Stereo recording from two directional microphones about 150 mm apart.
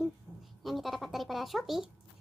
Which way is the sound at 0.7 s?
Centre (ahead or behind).